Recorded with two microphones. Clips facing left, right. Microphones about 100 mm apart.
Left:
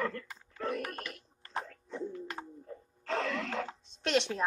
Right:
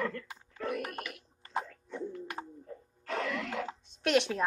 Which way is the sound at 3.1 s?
30° left (ahead or behind).